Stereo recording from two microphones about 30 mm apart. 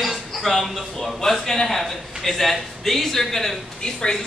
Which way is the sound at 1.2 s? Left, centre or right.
Centre.